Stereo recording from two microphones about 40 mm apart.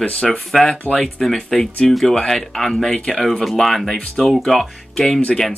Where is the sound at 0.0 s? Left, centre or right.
Left.